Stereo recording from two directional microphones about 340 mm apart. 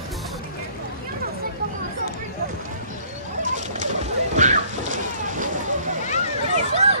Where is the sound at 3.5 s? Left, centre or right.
Right.